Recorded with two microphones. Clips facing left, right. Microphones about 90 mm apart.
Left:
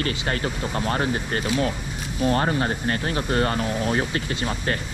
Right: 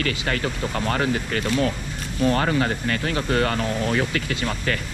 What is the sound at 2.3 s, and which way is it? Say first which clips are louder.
Speech: right 1 dB; 30° left (ahead or behind).